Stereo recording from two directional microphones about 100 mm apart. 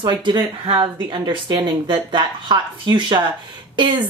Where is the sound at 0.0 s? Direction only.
50° right (ahead or behind).